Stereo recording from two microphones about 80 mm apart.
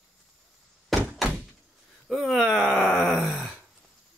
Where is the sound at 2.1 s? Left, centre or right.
Centre.